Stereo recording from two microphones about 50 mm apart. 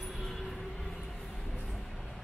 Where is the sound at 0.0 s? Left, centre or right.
Centre.